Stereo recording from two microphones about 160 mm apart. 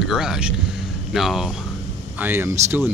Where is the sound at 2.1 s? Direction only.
15° right (ahead or behind).